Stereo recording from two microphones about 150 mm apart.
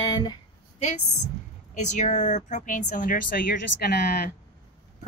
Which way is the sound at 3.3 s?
90° left.